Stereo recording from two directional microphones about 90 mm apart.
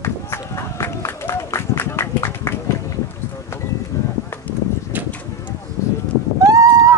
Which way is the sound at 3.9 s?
30° left (ahead or behind).